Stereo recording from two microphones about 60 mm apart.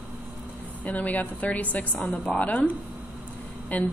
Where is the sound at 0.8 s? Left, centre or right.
Left.